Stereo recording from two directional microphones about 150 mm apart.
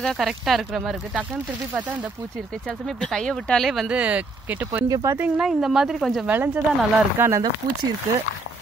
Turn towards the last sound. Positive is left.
turn(degrees=-20)  # may be behind; listen again after turning